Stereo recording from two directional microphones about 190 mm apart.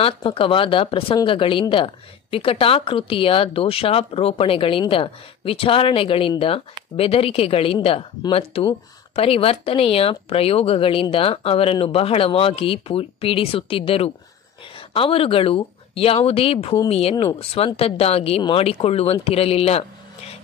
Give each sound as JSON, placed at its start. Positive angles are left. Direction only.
{"t": 0.0, "sound": "speech", "side_deg": 30}